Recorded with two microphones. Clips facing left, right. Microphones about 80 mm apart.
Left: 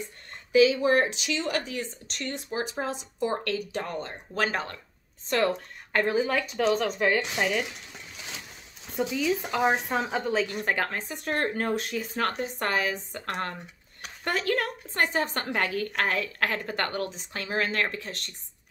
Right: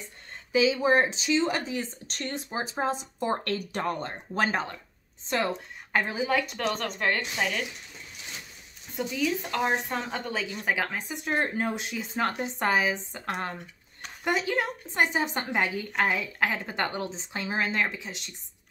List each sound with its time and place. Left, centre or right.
0.5 s speech: right
4.4 s speech: right
5.9 s speech: centre
9.1 s speech: centre
11.7 s a woman's voice: centre